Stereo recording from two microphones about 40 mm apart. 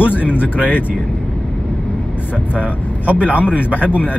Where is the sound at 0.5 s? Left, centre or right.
Right.